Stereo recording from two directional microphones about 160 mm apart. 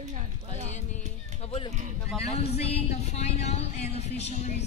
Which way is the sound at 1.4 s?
40° left (ahead or behind).